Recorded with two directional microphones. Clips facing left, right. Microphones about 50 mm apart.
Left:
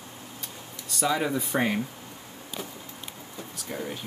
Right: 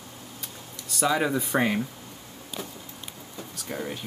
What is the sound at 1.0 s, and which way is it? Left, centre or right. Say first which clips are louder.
Speech: right 2 dB; right.